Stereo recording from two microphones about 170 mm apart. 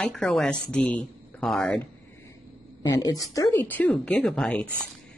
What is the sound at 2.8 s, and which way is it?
Speech, 25° left (ahead or behind).